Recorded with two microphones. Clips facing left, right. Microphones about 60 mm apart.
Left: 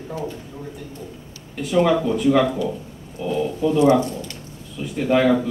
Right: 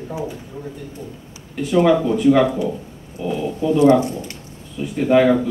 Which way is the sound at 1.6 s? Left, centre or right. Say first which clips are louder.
Right 3 dB; centre.